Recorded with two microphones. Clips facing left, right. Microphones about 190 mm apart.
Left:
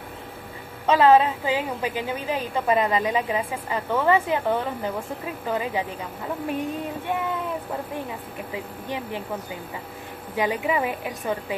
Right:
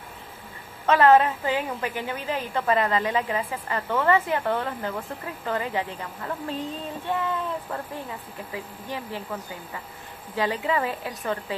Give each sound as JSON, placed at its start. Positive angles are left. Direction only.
{"t": 0.8, "sound": "a woman's voice", "side_deg": 15}
{"t": 8.5, "sound": "speech", "side_deg": 20}
{"t": 10.3, "sound": "a woman's voice", "side_deg": 15}